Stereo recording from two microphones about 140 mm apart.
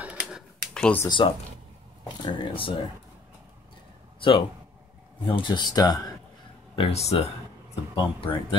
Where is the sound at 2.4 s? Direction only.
40° left (ahead or behind).